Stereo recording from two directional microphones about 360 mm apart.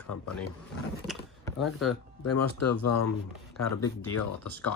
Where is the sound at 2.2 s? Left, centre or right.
Left.